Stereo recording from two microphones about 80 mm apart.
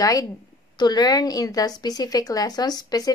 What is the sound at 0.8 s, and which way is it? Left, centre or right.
A woman's voice, left.